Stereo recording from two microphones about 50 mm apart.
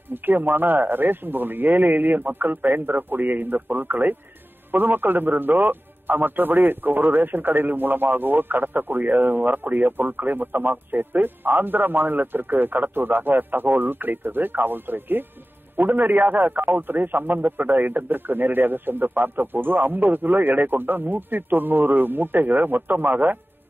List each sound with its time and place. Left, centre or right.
0.1 s a man's voice: right